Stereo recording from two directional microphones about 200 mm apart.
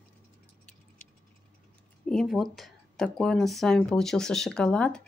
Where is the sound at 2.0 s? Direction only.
Centre (ahead or behind).